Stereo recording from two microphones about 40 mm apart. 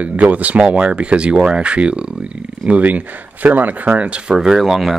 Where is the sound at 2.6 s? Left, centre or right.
Right.